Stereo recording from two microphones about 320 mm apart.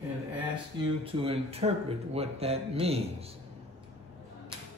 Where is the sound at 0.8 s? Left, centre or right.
Centre.